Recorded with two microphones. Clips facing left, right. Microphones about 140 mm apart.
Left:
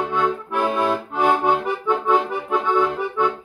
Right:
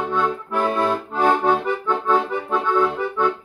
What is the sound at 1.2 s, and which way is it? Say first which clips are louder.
Accordion: right 1 dB; 15° left (ahead or behind).